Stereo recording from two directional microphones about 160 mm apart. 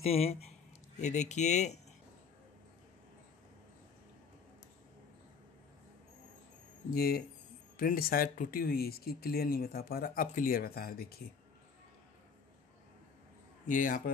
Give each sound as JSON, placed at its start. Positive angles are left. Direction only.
{"t": 0.0, "sound": "speech", "side_deg": 40}
{"t": 6.9, "sound": "speech", "side_deg": 70}
{"t": 13.7, "sound": "a man's voice", "side_deg": 55}